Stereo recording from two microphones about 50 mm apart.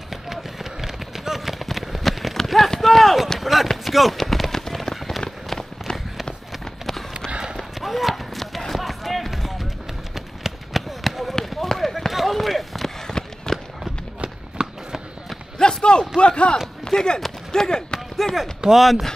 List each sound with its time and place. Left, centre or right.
0.1 s run: centre
7.2 s clip-clop: centre
7.8 s basketball bounce: centre
10.1 s a sound: centre
13.5 s run: centre
14.2 s a sound: centre
15.6 s run: centre
16.2 s a sound: centre
16.8 s speech: centre
17.5 s basketball bounce: centre
18.6 s speech: centre